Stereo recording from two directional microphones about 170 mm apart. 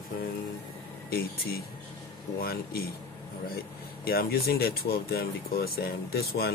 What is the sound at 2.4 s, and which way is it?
Speech, 60° left (ahead or behind).